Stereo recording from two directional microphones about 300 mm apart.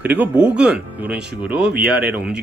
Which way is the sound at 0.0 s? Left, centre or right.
Centre.